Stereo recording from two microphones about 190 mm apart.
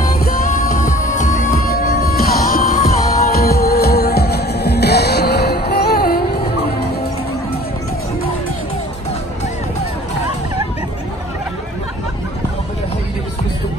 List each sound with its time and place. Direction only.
0.2 s music: 45° left (ahead or behind)